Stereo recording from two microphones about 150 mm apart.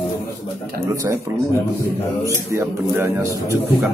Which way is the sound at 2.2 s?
20° right (ahead or behind).